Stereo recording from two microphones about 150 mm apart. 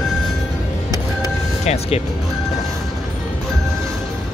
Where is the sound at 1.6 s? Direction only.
45° left (ahead or behind).